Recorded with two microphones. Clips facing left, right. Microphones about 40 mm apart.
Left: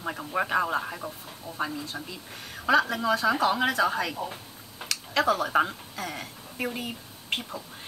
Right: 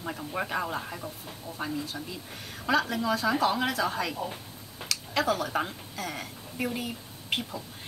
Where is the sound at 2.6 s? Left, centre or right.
Centre.